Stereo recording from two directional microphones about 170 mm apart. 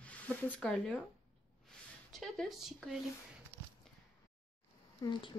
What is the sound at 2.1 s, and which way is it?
Speech, centre (ahead or behind).